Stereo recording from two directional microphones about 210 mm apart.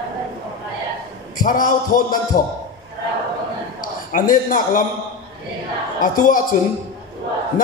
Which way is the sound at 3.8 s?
40° left (ahead or behind).